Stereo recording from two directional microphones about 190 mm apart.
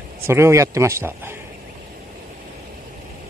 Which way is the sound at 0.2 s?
15° right (ahead or behind).